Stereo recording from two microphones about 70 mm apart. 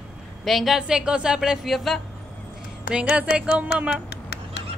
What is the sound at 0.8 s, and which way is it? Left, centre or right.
Speech, centre.